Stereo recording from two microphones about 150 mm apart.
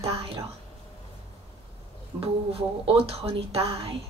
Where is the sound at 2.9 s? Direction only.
40° right (ahead or behind).